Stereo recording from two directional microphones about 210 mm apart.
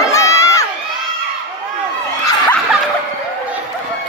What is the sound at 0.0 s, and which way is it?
Crowd, 15° left (ahead or behind).